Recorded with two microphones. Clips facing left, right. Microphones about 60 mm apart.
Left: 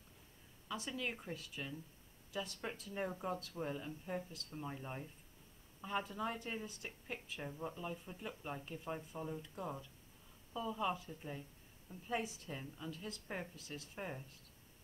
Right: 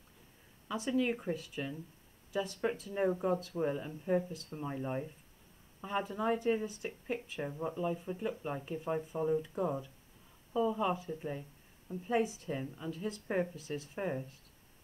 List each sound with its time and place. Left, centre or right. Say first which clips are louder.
0.7 s speech: right 10 dB; centre
2.9 s speech: right 9 dB; centre